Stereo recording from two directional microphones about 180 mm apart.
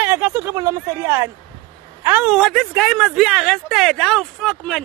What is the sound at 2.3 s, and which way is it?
Speech, centre (ahead or behind).